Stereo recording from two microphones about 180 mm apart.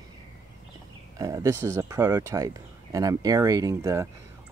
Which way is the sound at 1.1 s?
20° right (ahead or behind).